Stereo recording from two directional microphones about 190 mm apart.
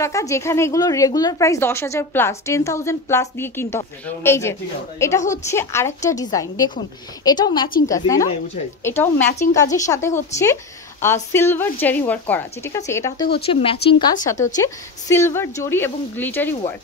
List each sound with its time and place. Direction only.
0.0 s a woman's voice: 15° left (ahead or behind)
13.5 s a woman's voice: 30° left (ahead or behind)
14.2 s speech: 15° left (ahead or behind)